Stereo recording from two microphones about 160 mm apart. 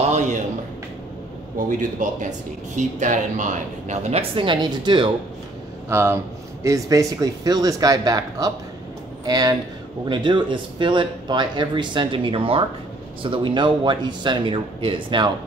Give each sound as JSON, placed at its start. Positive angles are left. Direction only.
{"t": 0.1, "sound": "a sound", "side_deg": -50}
{"t": 1.8, "sound": "speech", "side_deg": -50}
{"t": 4.4, "sound": "speech", "side_deg": -30}
{"t": 5.9, "sound": "speech", "side_deg": -15}